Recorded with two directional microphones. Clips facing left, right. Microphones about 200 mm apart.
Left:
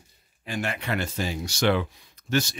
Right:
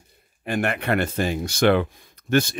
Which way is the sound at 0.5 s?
55° right (ahead or behind).